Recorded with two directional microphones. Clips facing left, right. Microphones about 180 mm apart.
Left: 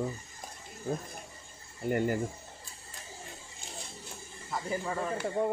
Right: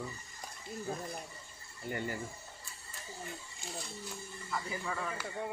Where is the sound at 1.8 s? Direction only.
50° left (ahead or behind).